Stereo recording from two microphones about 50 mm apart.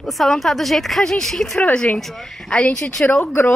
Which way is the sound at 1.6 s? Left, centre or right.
Left.